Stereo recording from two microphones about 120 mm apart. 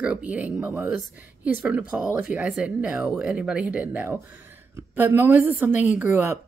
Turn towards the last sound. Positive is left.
turn(degrees=-15)  # may be behind; listen again after turning